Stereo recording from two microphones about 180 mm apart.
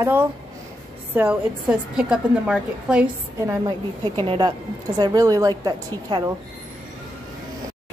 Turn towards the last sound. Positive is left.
turn(degrees=-20)  # may be behind; listen again after turning